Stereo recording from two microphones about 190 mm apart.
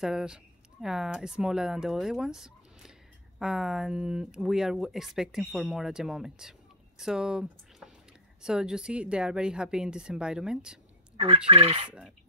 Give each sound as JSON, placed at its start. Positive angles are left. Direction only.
{"t": 0.0, "sound": "speech", "side_deg": -5}
{"t": 11.1, "sound": "fowl", "side_deg": -30}